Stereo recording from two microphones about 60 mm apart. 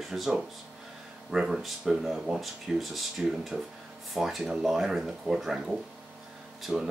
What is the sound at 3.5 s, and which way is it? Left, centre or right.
Speech, centre.